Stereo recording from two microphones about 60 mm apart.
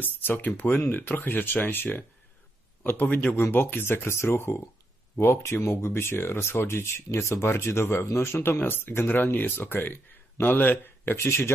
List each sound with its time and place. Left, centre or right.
0.0 s speech: left
11.1 s speech: left